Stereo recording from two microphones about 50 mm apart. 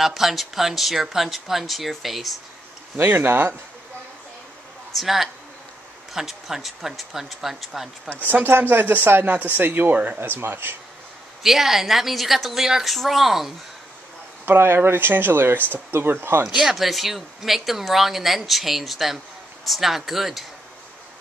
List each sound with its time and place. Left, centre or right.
0.0 s speech: centre
3.0 s speech: right
4.9 s speech: centre
8.3 s speech: right
11.4 s speech: centre
14.4 s speech: right
16.4 s speech: centre